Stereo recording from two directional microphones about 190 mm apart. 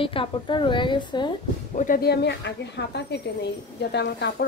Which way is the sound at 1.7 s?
45° left (ahead or behind).